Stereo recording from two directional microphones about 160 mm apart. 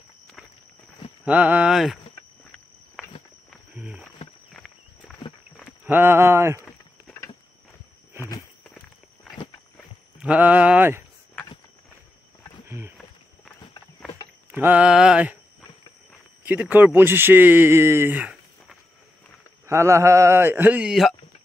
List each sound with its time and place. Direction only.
1.2 s speech: 10° right (ahead or behind)
3.7 s wild animals: 5° right (ahead or behind)
4.6 s walk: 5° left (ahead or behind)
5.9 s speech: 15° right (ahead or behind)
8.6 s walk: 5° left (ahead or behind)
10.1 s speech: 5° right (ahead or behind)
12.6 s walk: 15° right (ahead or behind)
13.7 s a sound: 25° left (ahead or behind)
14.6 s speech: 10° right (ahead or behind)
16.4 s speech: 10° right (ahead or behind)
19.6 s speech: 15° right (ahead or behind); by 21.2 s centre (ahead or behind)